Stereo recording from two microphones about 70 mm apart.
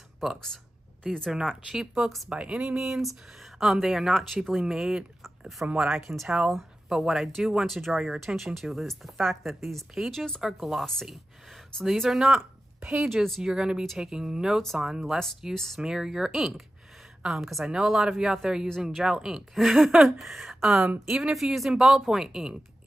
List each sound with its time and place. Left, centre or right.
1.7 s speech: centre
2.2 s speech: centre
12.8 s speech: right
13.1 s speech: centre
13.4 s speech: centre
15.5 s speech: centre
15.8 s speech: centre